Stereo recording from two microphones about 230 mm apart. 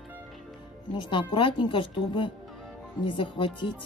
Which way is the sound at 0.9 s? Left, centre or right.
Centre.